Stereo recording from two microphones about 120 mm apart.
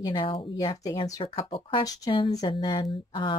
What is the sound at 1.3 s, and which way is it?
Speech, 45° left (ahead or behind).